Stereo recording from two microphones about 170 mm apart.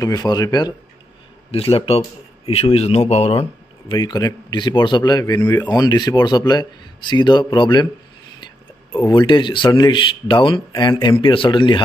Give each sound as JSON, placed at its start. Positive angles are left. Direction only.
{"t": 0.0, "sound": "a man's voice", "side_deg": 25}
{"t": 3.9, "sound": "speech", "side_deg": 25}
{"t": 5.4, "sound": "speech", "side_deg": 10}
{"t": 5.7, "sound": "speech", "side_deg": 25}
{"t": 8.9, "sound": "speech", "side_deg": 25}